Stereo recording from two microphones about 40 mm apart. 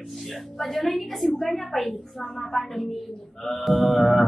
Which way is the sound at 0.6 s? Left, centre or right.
Centre.